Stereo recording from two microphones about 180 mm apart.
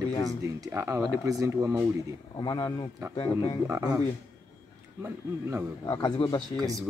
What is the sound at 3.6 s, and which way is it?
Speech, 15° right (ahead or behind).